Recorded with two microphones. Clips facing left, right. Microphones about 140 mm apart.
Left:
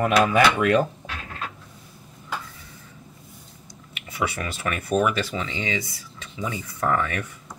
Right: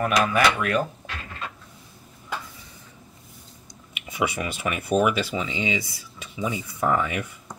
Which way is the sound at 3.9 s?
15° right (ahead or behind).